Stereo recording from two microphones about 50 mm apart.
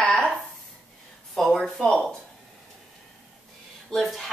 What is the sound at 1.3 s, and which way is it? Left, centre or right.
Speech, centre.